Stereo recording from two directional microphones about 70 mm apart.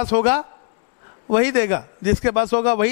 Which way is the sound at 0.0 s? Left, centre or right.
Centre.